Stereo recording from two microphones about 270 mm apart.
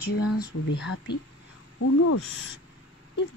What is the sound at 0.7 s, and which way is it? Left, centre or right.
Speech, left.